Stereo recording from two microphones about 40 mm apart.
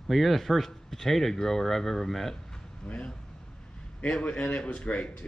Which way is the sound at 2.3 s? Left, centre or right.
Centre.